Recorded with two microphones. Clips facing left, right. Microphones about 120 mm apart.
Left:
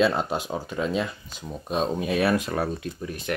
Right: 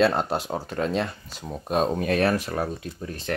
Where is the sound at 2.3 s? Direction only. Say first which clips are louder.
Left 2 dB; 20° left (ahead or behind).